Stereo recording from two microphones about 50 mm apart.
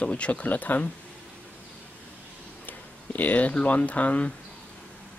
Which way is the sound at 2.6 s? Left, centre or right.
Left.